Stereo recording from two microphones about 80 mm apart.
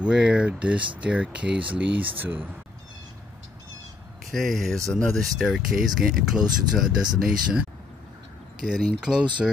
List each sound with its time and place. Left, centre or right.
0.0 s speech: centre
4.3 s speech: centre
8.6 s speech: centre